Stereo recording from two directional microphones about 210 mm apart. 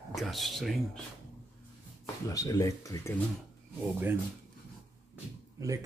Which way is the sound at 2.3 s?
15° left (ahead or behind).